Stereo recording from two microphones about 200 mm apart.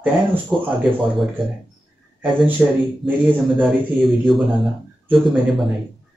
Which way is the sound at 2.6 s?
5° right (ahead or behind).